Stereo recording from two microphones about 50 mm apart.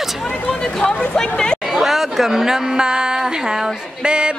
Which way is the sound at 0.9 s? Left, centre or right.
Left.